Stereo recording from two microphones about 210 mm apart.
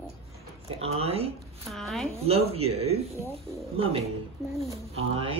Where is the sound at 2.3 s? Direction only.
30° right (ahead or behind).